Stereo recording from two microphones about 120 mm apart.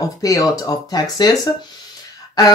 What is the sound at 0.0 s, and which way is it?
Speech, 30° left (ahead or behind).